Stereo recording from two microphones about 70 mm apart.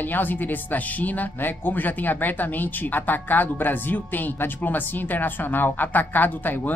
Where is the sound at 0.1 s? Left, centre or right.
Left.